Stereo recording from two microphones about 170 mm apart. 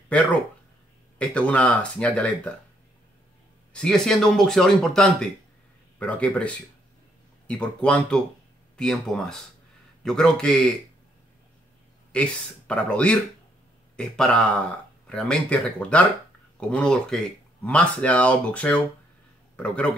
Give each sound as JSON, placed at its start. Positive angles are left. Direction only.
{"t": 0.1, "sound": "speech", "side_deg": 5}
{"t": 3.7, "sound": "speech", "side_deg": 5}
{"t": 12.1, "sound": "speech", "side_deg": 5}